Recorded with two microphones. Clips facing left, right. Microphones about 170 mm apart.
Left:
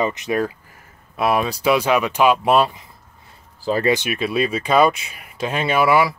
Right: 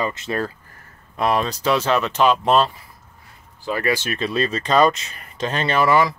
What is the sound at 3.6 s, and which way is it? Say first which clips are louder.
Speech: left 4 dB; 35° left (ahead or behind).